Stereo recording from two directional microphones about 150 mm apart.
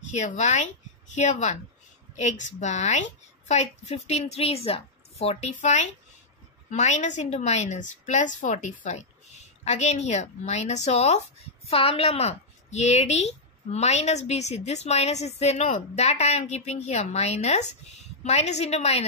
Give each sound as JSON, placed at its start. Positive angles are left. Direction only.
{"t": 0.1, "sound": "a woman's voice", "side_deg": 50}